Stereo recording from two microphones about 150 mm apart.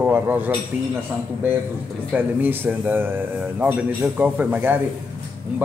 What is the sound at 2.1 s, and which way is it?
A man's voice, 15° right (ahead or behind).